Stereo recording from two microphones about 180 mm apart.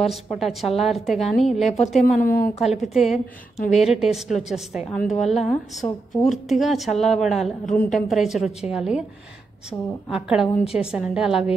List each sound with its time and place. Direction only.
0.0 s a woman's voice: centre (ahead or behind)
2.0 s speech: 50° left (ahead or behind)
2.4 s a woman's voice: centre (ahead or behind)
3.5 s speech: 40° left (ahead or behind)
3.8 s a woman's voice: centre (ahead or behind)